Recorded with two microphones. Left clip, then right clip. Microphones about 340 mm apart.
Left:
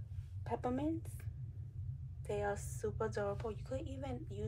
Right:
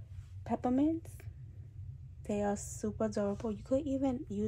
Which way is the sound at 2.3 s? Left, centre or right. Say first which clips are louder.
Right 4 dB; right.